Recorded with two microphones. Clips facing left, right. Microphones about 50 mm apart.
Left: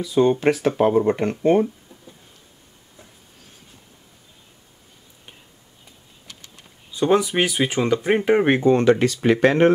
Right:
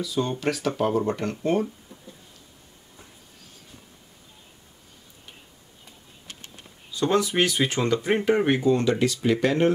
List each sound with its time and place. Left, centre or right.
0.0 s speech: left
6.9 s speech: left